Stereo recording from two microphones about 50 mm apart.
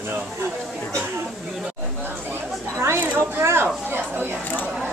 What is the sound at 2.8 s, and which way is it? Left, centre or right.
A woman's voice, right.